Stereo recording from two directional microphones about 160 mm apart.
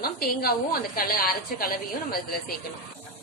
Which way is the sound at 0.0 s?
70° left (ahead or behind).